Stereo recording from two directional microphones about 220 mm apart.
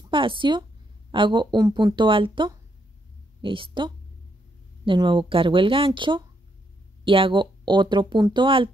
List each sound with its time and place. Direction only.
0.1 s speech: 25° right (ahead or behind)